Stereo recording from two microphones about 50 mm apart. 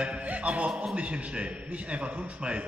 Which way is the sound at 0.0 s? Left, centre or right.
Right.